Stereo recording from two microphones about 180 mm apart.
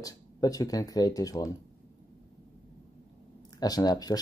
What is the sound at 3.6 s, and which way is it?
Speech, 20° left (ahead or behind).